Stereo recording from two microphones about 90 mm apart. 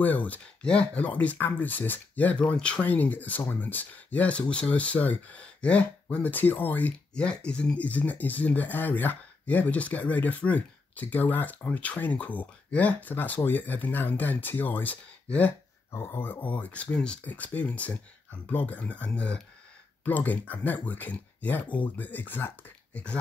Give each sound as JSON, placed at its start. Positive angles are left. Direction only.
{"t": 0.0, "sound": "speech", "side_deg": 20}
{"t": 15.9, "sound": "speech", "side_deg": 30}